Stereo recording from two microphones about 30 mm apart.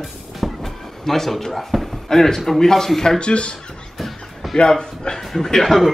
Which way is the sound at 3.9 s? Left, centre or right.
Centre.